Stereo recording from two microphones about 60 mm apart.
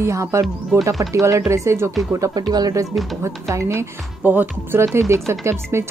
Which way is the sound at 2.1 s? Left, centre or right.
Right.